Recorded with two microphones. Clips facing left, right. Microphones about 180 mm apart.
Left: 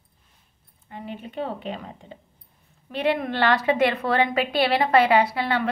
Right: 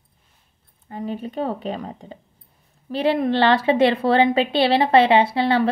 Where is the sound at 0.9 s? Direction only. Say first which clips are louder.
Right 7 dB; 40° right (ahead or behind).